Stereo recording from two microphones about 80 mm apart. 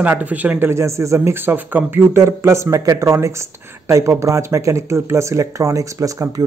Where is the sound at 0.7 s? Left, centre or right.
Right.